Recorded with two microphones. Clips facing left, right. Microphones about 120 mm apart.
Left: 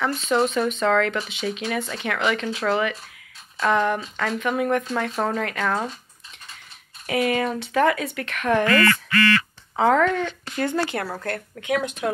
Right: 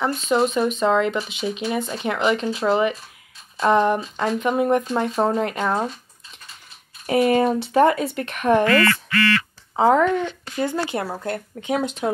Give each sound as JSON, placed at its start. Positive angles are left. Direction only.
{"t": 0.3, "sound": "speech", "side_deg": -15}
{"t": 7.1, "sound": "speech", "side_deg": -30}